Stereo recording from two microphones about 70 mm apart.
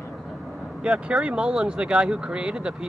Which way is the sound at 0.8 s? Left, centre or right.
Centre.